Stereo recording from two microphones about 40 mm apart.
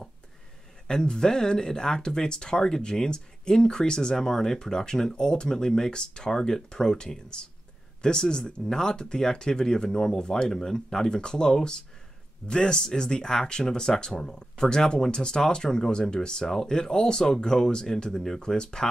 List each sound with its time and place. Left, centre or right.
0.8 s speech: centre